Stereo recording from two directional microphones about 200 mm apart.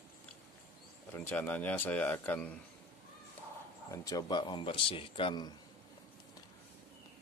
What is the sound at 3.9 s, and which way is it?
A man's voice, 20° left (ahead or behind).